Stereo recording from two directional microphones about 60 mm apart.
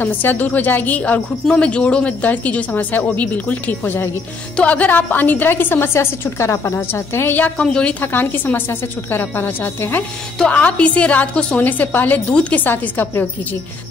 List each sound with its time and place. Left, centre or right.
0.0 s a woman's voice: left
4.6 s a woman's voice: left
5.9 s a woman's voice: left
6.7 s a woman's voice: left
7.6 s a woman's voice: centre
8.0 s a woman's voice: left
10.5 s a woman's voice: left
12.3 s a woman's voice: centre